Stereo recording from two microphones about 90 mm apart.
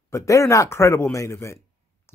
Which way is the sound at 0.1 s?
35° left (ahead or behind).